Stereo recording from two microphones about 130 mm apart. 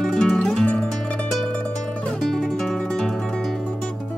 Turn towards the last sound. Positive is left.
turn(degrees=5)  # may be behind; listen again after turning